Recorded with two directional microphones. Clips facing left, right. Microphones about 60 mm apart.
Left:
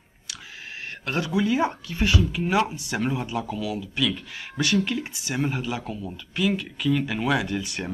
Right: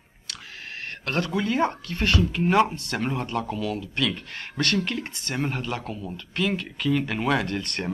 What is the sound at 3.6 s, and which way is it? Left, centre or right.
Speech, right.